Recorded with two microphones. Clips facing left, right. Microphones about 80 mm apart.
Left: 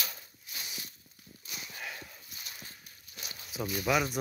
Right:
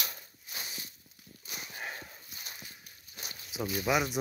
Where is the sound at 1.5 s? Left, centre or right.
Right.